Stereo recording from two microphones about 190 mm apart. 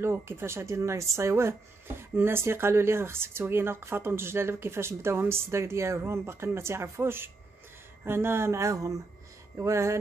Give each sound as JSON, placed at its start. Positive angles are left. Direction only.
{"t": 0.0, "sound": "speech", "side_deg": -15}